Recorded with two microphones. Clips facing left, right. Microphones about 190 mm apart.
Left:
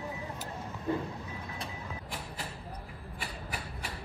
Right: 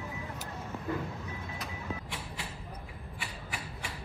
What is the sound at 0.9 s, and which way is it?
Speech, 25° left (ahead or behind).